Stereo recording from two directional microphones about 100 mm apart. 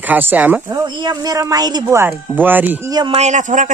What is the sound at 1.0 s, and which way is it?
Speech, 40° right (ahead or behind).